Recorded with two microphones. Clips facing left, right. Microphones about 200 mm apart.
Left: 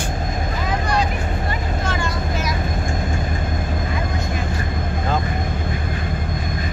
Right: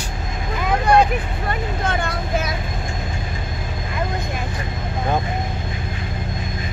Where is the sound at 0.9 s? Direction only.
55° right (ahead or behind).